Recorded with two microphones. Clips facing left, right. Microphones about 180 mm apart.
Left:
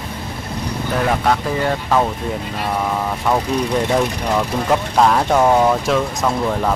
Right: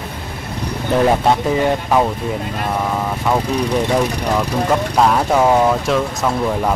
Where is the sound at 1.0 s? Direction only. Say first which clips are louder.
Right 3 dB; 20° right (ahead or behind).